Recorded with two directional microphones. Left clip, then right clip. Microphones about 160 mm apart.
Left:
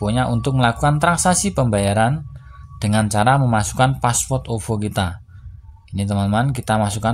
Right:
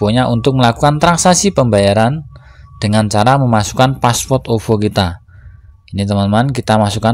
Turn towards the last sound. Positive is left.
turn(degrees=-30)  # may be behind; listen again after turning